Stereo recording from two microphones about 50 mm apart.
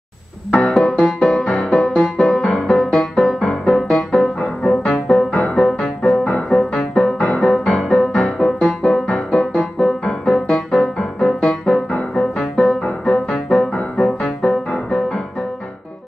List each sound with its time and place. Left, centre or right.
0.5 s music: left
0.7 s music: centre
1.4 s music: left
1.7 s music: centre
4.8 s music: left
7.5 s music: centre